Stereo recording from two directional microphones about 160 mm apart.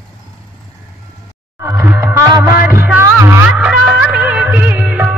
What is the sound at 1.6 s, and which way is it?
Music, 15° right (ahead or behind).